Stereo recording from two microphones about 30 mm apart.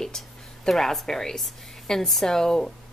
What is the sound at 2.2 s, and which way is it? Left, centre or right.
Speech, centre.